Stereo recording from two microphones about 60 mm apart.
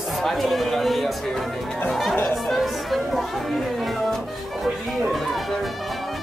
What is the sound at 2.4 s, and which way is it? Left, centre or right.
Music, centre.